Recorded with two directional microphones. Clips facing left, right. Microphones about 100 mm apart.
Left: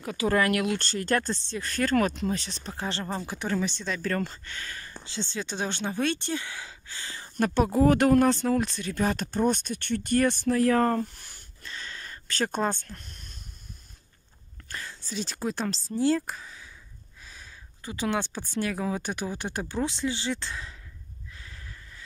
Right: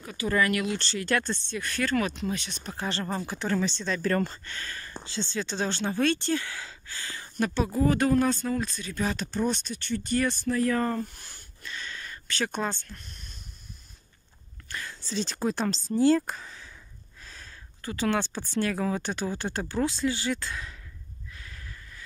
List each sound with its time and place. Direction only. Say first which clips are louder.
0.0 s speech: left 2 dB; 80° left; by 2.7 s 35° left (ahead or behind)
2.7 s speech: right 1 dB; 20° left (ahead or behind)
4.0 s speech: right 3 dB; 10° right (ahead or behind)
4.3 s speech: right 1 dB; 5° left (ahead or behind); by 7.2 s 25° left (ahead or behind)
7.3 s speech: left 3 dB; 50° left (ahead or behind)
11.6 s a sound: right 1 dB; 30° left (ahead or behind)
14.7 s whispering: right 1 dB; 25° left (ahead or behind)
15.0 s speech: right 3 dB; 5° left (ahead or behind); by 20.7 s 25° left (ahead or behind)
21.3 s snort: right 1 dB; 25° left (ahead or behind)